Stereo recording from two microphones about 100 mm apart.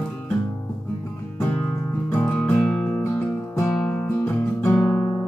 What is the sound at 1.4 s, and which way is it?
Music, 25° left (ahead or behind).